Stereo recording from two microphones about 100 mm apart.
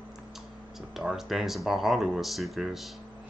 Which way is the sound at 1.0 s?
5° right (ahead or behind).